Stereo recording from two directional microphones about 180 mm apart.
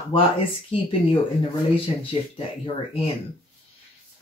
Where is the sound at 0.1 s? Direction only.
30° left (ahead or behind).